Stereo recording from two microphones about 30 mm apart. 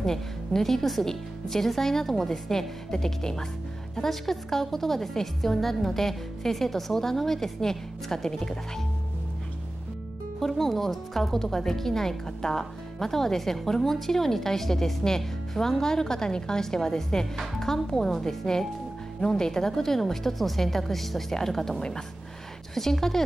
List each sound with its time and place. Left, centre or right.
0.0 s a woman's voice: centre
2.9 s a woman's voice: centre
10.4 s a woman's voice: centre